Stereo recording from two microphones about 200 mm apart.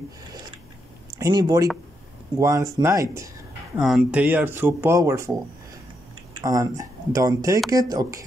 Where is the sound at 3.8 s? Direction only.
5° right (ahead or behind).